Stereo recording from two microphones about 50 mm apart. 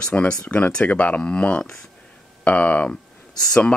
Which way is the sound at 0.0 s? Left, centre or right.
Left.